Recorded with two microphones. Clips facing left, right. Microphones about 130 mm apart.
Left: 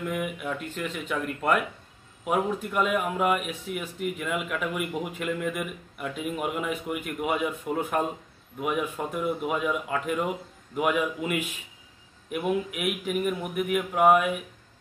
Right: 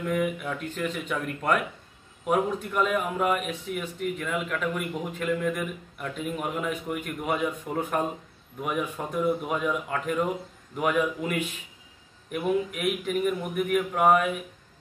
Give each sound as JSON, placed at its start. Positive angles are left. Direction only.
{"t": 0.0, "sound": "speech", "side_deg": 5}